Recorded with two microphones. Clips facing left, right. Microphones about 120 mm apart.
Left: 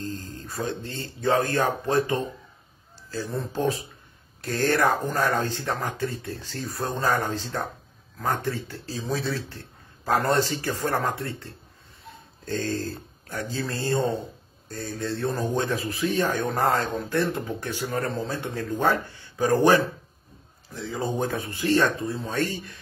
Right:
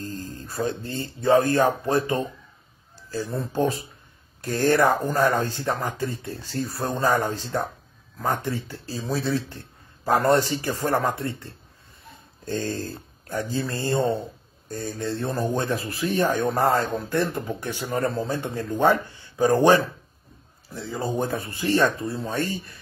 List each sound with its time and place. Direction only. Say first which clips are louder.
0.6 s speech: right 3 dB; 15° right (ahead or behind)
4.4 s speech: right 3 dB; 15° right (ahead or behind)
21.1 s speech: right 1 dB; 15° right (ahead or behind)